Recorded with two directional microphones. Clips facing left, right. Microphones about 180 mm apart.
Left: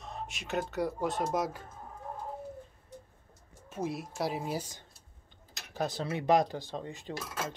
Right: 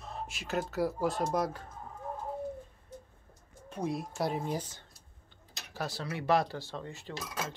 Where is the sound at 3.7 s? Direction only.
5° left (ahead or behind).